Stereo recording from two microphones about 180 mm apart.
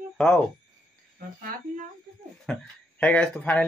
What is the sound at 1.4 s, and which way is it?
Speech, 50° right (ahead or behind).